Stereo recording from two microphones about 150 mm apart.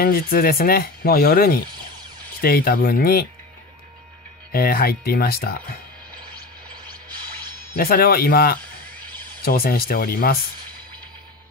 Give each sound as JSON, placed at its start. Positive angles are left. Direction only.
{"t": 0.0, "sound": "speech", "side_deg": 80}
{"t": 4.5, "sound": "speech", "side_deg": 85}
{"t": 7.7, "sound": "speech", "side_deg": 80}